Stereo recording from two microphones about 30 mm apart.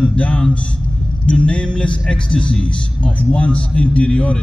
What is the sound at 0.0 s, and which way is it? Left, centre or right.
Speech, left.